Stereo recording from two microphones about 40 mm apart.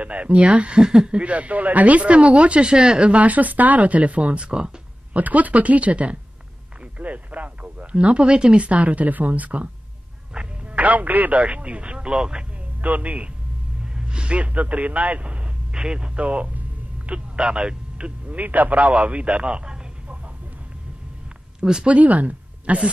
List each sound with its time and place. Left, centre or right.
0.0 s speech: right
5.1 s speech: right
10.7 s speech: right
12.8 s speech: right
13.9 s a man's voice: right
15.7 s a sound: right
17.4 s speech: right
18.4 s a man's voice: right
18.9 s speech: right
21.5 s speech: centre
21.8 s a woman's voice: right